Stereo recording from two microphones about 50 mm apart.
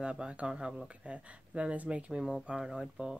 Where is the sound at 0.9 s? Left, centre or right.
Right.